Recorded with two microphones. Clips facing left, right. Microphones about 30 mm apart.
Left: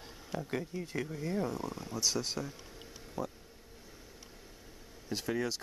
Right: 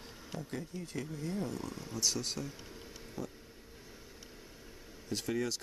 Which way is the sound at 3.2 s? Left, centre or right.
Centre.